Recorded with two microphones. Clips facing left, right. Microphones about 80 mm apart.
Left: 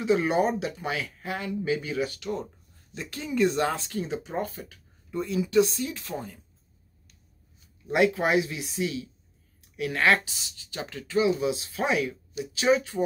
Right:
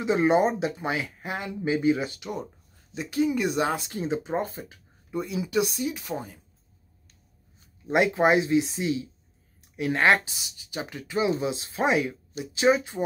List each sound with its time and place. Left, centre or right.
0.0 s speech: right
7.9 s speech: right